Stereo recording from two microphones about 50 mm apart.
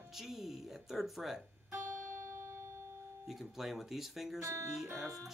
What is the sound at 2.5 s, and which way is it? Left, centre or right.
Music, right.